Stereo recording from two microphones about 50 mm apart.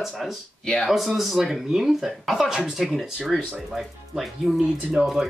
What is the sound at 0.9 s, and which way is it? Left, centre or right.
Speech, centre.